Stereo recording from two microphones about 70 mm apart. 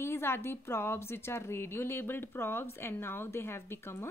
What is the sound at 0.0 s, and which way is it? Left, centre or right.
A woman's voice, left.